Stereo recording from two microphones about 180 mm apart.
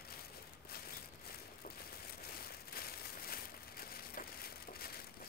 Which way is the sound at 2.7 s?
55° left (ahead or behind).